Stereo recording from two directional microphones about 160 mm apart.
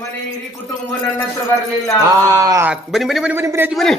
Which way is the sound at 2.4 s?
20° right (ahead or behind).